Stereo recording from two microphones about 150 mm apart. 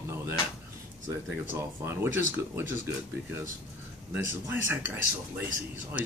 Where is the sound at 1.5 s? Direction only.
15° right (ahead or behind).